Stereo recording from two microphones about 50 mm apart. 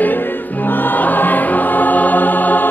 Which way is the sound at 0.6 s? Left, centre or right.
Left.